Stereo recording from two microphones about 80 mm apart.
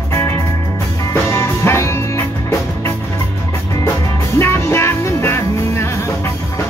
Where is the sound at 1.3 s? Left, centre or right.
Left.